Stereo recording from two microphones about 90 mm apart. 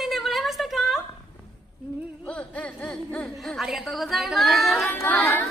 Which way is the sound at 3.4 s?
Centre (ahead or behind).